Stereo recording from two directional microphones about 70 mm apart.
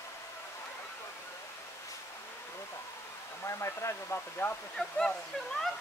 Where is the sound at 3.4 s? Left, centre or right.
Left.